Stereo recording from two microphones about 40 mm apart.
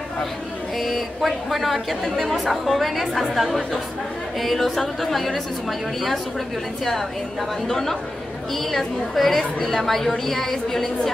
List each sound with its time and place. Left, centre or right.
0.7 s a woman's voice: centre